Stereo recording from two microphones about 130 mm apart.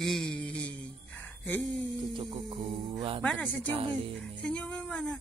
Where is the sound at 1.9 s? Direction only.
35° right (ahead or behind).